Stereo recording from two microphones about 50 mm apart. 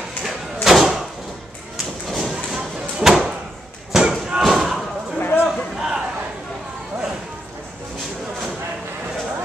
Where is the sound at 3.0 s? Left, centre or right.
Centre.